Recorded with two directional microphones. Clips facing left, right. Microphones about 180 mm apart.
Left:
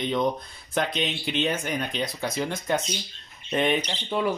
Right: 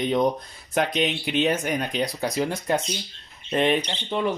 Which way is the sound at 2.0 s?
35° right (ahead or behind).